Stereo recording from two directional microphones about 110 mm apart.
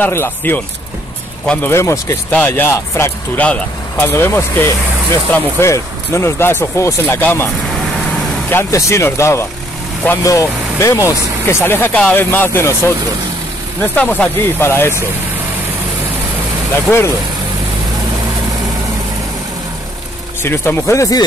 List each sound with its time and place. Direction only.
0.0 s speech: 20° left (ahead or behind)
1.7 s speech: 25° left (ahead or behind)
8.5 s speech: 25° left (ahead or behind)
16.9 s speech: 15° left (ahead or behind)
20.4 s speech: 20° left (ahead or behind)